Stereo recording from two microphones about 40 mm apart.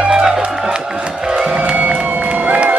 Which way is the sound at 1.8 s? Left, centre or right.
Right.